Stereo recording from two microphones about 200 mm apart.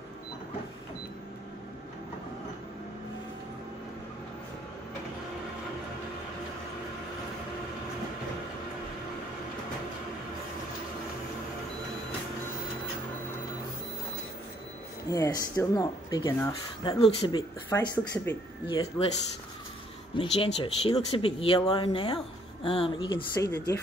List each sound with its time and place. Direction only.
15.0 s speech: 15° left (ahead or behind)
17.6 s speech: 15° left (ahead or behind)
20.2 s speech: 30° left (ahead or behind); by 23.8 s 15° left (ahead or behind)